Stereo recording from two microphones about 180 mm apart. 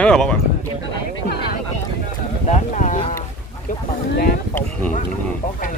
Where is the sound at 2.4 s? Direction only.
40° left (ahead or behind).